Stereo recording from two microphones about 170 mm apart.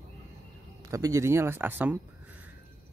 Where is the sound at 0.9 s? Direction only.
20° right (ahead or behind).